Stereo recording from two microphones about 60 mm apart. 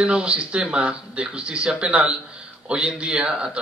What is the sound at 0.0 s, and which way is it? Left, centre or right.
A man's voice, centre.